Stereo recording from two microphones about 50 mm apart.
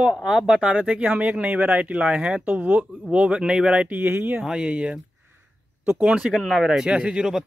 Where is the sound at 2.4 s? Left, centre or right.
Right.